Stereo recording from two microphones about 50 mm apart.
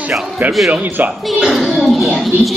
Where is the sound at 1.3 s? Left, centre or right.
Centre.